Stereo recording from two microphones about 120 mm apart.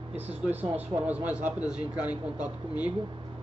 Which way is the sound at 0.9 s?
15° right (ahead or behind).